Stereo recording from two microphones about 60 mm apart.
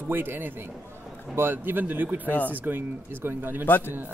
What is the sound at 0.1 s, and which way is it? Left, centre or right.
Speech, right.